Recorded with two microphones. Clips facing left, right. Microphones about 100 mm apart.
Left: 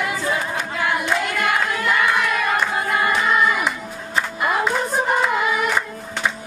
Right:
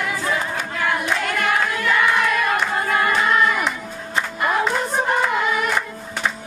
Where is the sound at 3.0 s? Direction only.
5° left (ahead or behind).